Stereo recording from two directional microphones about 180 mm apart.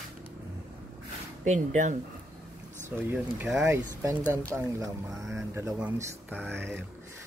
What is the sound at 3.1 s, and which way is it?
Speech, 10° right (ahead or behind).